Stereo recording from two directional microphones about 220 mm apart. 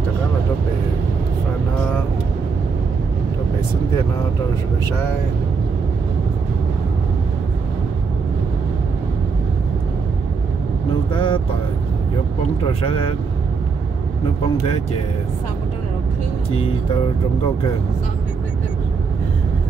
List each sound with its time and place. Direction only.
11.1 s speech: 20° left (ahead or behind)